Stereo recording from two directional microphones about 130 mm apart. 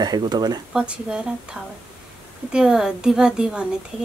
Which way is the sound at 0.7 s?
5° right (ahead or behind).